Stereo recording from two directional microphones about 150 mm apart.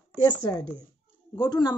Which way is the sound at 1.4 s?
25° left (ahead or behind).